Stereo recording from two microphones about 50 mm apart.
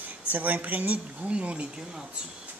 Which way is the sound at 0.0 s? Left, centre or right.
Right.